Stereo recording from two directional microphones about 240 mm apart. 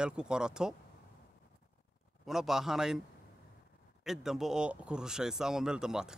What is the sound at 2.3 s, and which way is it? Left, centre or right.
Speech, centre.